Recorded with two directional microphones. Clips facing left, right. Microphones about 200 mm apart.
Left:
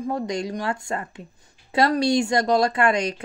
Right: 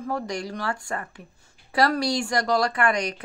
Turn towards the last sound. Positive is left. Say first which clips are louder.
# left 3 dB
turn(degrees=25)  # may be behind; listen again after turning